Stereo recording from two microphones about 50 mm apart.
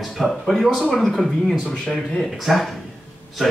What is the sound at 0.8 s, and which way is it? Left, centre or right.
Speech, centre.